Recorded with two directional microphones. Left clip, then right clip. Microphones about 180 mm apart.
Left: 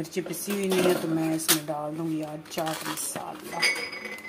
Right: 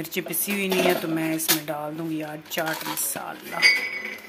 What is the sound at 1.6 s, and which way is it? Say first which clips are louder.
Speech: right 1 dB; 20° right (ahead or behind).